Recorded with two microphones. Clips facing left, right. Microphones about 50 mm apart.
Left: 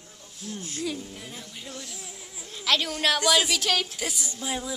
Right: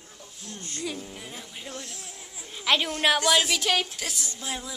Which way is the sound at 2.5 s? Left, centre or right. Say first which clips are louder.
Right 1 dB; centre.